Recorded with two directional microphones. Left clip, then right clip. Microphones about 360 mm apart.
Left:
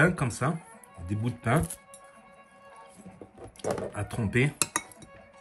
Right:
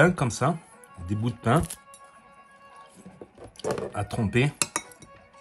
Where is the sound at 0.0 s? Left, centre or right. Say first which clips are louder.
Right 4 dB; centre.